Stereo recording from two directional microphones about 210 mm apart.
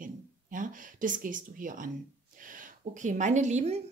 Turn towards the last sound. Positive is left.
turn(degrees=-35)  # may be behind; listen again after turning